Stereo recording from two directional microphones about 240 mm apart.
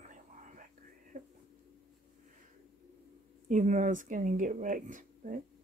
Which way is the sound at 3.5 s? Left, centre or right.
Right.